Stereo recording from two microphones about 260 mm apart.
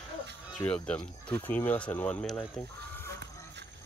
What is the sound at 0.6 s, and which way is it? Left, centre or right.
Speech, centre.